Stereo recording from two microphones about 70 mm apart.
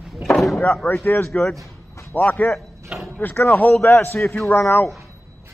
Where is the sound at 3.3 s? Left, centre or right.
Left.